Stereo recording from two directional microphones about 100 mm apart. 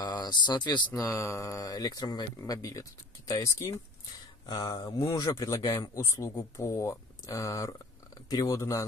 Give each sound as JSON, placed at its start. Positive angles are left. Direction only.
{"t": 0.0, "sound": "speech", "side_deg": 45}
{"t": 1.0, "sound": "a man's voice", "side_deg": 25}
{"t": 4.5, "sound": "a man's voice", "side_deg": 40}